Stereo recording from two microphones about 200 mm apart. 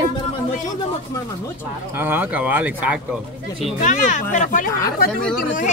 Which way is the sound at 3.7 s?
40° left (ahead or behind).